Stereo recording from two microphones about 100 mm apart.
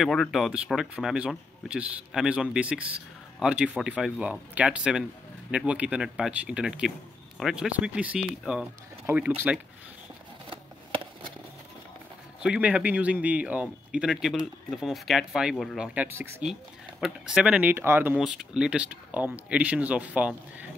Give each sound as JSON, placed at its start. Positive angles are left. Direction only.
{"t": 0.0, "sound": "speech", "side_deg": 0}
{"t": 12.4, "sound": "speech", "side_deg": -10}
{"t": 14.1, "sound": "speech", "side_deg": 0}
{"t": 15.9, "sound": "speech", "side_deg": -20}
{"t": 17.0, "sound": "speech", "side_deg": -10}
{"t": 18.1, "sound": "speech", "side_deg": -5}